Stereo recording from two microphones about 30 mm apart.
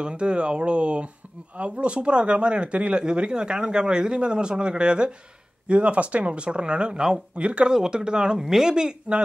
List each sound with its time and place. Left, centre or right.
0.0 s speech: right
3.0 s speech: right
5.7 s speech: right
7.7 s speech: right
8.4 s speech: centre